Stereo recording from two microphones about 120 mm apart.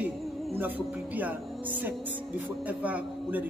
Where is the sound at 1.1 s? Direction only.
15° right (ahead or behind).